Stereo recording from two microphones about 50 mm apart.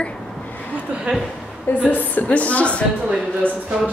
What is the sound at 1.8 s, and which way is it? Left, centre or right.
A woman's voice, left.